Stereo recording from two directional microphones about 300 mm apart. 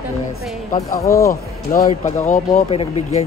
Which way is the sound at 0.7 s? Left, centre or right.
Centre.